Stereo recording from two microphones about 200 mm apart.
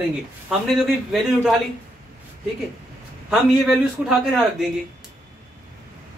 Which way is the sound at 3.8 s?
Centre (ahead or behind).